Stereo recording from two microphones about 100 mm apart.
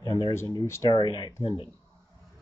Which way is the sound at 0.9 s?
45° left (ahead or behind).